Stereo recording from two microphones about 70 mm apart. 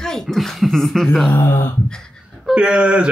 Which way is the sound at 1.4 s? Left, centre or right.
Left.